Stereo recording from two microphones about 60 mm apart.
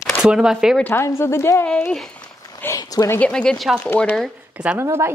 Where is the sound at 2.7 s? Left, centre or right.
Left.